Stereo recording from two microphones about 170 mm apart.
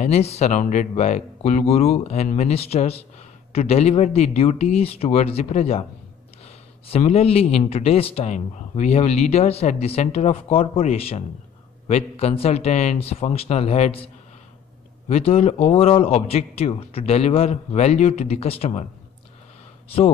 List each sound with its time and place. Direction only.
0.0 s speech: 40° left (ahead or behind)